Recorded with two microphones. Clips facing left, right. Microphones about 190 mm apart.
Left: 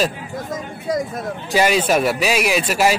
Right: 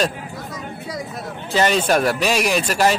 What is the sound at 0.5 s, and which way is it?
Vehicle, 50° left (ahead or behind).